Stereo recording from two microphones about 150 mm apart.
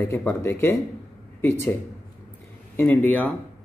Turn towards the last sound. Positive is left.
turn(degrees=10)  # may be behind; listen again after turning